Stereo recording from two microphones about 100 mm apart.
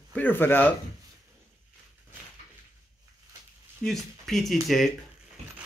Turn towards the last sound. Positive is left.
turn(degrees=0)  # may be behind; listen again after turning